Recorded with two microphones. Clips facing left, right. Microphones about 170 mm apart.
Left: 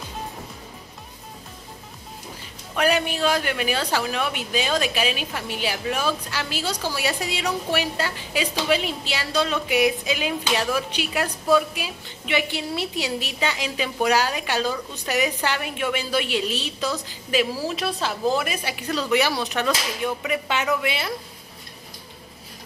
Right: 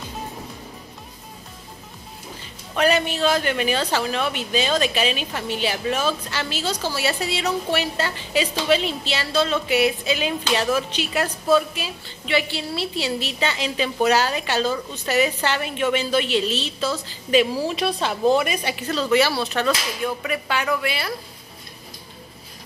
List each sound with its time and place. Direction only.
2.7 s a woman's voice: 10° left (ahead or behind)